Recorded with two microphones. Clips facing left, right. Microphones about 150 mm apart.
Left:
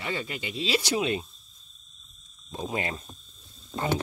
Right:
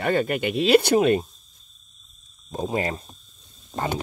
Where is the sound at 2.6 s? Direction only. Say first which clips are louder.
Right 6 dB; 35° right (ahead or behind).